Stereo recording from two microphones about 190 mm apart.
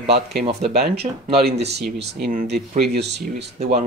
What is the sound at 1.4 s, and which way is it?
Speech, 55° right (ahead or behind).